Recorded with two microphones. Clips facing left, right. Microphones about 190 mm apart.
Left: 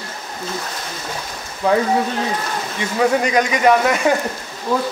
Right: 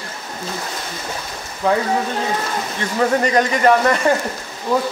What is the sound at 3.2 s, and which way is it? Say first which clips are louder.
Speech: even; 10° left (ahead or behind).